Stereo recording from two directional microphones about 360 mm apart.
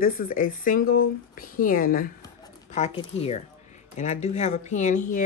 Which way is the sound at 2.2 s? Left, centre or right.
Centre.